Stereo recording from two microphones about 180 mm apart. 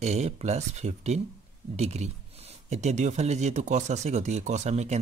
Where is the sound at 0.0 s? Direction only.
40° right (ahead or behind).